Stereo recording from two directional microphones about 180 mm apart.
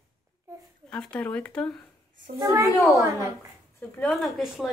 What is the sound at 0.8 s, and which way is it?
Speech, 5° left (ahead or behind).